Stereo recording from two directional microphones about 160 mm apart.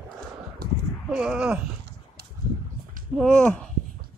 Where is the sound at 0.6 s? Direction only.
75° right (ahead or behind).